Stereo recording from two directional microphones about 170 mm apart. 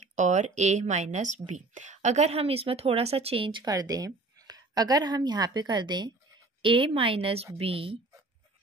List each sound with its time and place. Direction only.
0.1 s a woman's voice: 45° right (ahead or behind)